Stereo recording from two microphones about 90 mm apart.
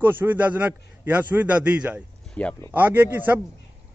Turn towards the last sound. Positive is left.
turn(degrees=-20)  # may be behind; listen again after turning